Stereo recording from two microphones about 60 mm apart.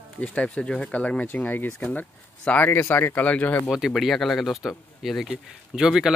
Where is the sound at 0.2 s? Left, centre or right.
Left.